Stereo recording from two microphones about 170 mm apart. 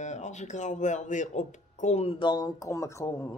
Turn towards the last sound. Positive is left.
turn(degrees=15)  # may be behind; listen again after turning